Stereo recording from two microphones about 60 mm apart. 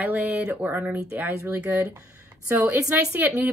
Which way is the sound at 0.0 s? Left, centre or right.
Right.